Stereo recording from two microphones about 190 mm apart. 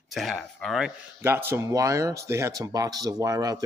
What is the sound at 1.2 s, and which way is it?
Speech, 10° right (ahead or behind).